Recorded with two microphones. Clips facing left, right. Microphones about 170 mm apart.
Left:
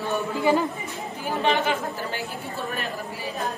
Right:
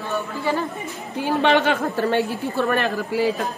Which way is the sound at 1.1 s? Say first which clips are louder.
Right 6 dB; 75° right (ahead or behind).